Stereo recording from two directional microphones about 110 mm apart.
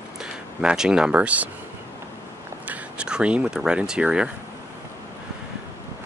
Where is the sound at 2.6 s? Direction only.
10° right (ahead or behind).